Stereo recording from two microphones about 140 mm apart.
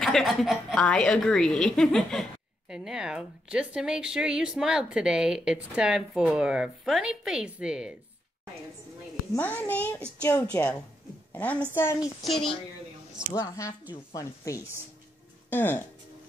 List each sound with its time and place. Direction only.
0.0 s a woman's voice: centre (ahead or behind)
9.3 s a woman's voice: 15° left (ahead or behind)
12.0 s a woman's voice: centre (ahead or behind)
13.3 s a woman's voice: 20° left (ahead or behind)